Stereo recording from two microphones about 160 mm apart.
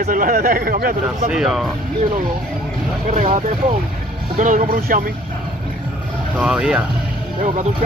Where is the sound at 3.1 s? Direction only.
55° right (ahead or behind).